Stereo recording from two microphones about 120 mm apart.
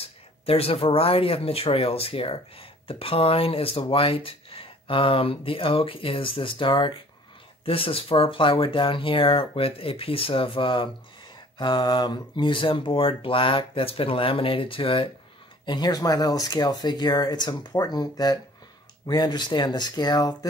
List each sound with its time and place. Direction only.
0.0 s speech: 55° left (ahead or behind)
15.6 s speech: 35° left (ahead or behind)